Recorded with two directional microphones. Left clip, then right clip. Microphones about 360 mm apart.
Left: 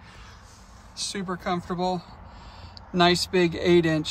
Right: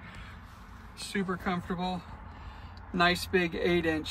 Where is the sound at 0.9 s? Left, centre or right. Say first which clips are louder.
Left 3 dB; centre.